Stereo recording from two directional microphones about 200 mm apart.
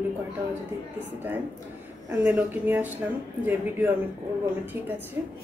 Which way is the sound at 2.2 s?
10° right (ahead or behind).